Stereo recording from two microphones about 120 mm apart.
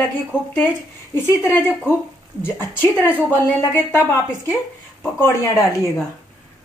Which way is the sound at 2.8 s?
15° left (ahead or behind).